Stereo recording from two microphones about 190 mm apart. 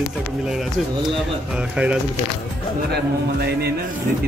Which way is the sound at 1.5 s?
5° right (ahead or behind).